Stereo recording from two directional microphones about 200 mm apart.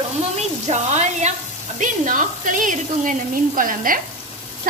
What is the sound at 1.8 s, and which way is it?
Speech, 40° right (ahead or behind).